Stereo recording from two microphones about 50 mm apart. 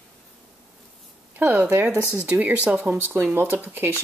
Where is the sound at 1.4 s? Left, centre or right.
Right.